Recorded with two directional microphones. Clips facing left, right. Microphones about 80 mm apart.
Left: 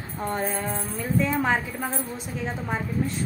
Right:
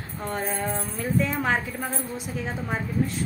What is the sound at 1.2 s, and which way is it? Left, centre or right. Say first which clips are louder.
A woman's voice: left 2 dB; centre.